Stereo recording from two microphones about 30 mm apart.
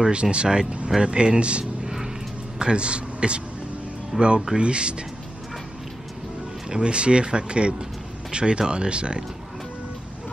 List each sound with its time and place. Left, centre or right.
0.1 s speech: right
4.1 s speech: centre
4.6 s speech: right
6.7 s speech: right